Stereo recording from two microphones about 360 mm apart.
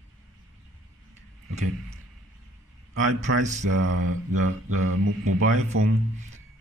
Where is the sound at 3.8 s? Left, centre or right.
Right.